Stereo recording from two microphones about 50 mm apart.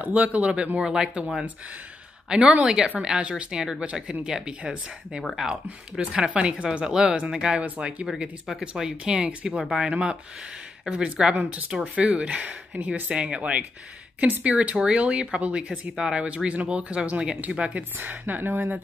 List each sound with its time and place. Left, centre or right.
0.0 s speech: right; by 5.6 s centre
5.9 s speech: right
17.9 s speech: right